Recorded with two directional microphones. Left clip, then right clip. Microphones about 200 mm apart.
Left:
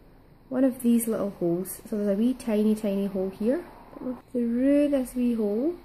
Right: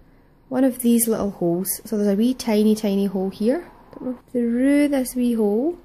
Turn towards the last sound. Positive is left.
turn(degrees=-50)  # may be behind; listen again after turning